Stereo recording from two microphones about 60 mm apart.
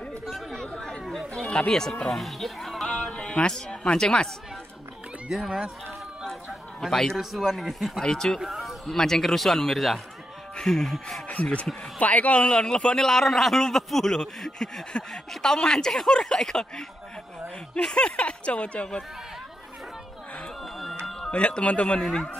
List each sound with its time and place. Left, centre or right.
0.2 s chatter: centre
0.6 s chatter: centre
1.3 s a sound: centre
1.7 s speech: centre
3.0 s speech: centre
5.3 s speech: centre
6.9 s a man's voice: centre
7.2 s speech: centre
8.0 s a man's voice: centre
8.4 s a sound: centre
8.8 s a man's voice: centre
11.2 s a man's voice: left
20.6 s music: centre
21.3 s speech: centre